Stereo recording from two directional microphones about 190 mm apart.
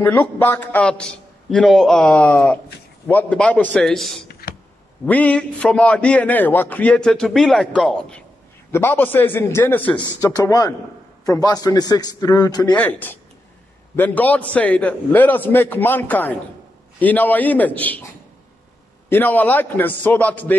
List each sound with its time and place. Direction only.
0.0 s a man's voice: 10° left (ahead or behind)
4.3 s a sound: 55° left (ahead or behind)
5.0 s a man's voice: 5° left (ahead or behind)
9.9 s a man's voice: 20° left (ahead or behind)
12.7 s a man's voice: 10° left (ahead or behind)
19.0 s a man's voice: 10° left (ahead or behind)